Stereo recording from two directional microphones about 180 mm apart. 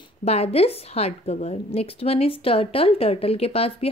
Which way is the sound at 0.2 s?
35° left (ahead or behind).